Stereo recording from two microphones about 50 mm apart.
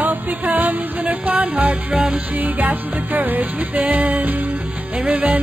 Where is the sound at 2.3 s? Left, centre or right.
Right.